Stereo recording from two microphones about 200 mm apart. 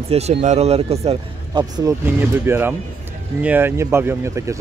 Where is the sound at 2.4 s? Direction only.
10° right (ahead or behind).